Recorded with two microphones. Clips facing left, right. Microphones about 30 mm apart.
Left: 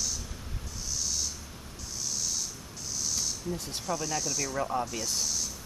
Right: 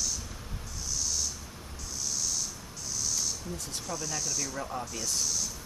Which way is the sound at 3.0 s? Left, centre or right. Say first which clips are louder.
Even; centre.